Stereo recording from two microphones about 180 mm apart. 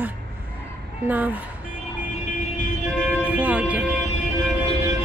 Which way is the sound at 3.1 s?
10° right (ahead or behind).